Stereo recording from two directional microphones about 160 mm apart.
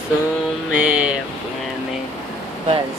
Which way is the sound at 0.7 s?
10° right (ahead or behind).